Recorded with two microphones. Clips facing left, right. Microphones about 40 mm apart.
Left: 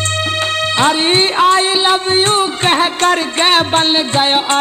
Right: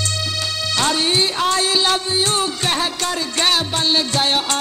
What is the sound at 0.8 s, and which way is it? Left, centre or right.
Music, left.